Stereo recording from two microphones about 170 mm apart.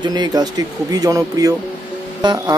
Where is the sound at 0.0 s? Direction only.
25° right (ahead or behind).